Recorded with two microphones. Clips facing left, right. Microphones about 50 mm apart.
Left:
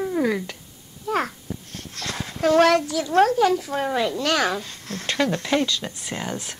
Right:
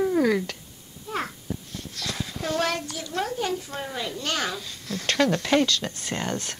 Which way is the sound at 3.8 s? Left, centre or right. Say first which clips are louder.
Left 9 dB; left.